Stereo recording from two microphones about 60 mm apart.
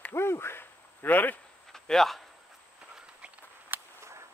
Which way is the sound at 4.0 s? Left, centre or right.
Right.